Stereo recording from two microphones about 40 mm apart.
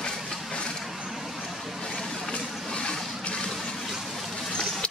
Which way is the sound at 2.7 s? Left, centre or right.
Left.